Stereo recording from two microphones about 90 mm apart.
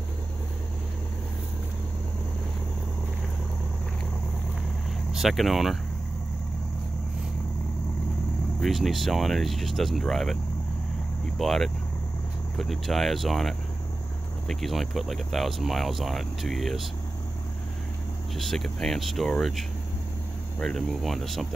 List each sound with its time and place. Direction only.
5.1 s speech: centre (ahead or behind)
8.5 s speech: centre (ahead or behind)
18.4 s speech: 5° left (ahead or behind)